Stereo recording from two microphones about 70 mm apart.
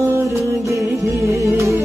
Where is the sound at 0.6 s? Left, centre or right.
Right.